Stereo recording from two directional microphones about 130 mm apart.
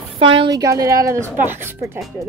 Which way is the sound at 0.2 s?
40° right (ahead or behind).